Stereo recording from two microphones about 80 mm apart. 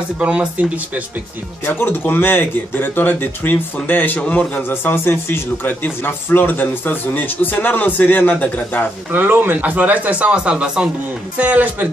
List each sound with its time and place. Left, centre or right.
0.2 s speech: centre
1.7 s a man's voice: left
4.6 s a man's voice: left
9.1 s speech: right